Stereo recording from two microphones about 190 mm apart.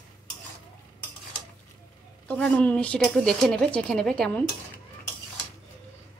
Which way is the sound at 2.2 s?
5° left (ahead or behind).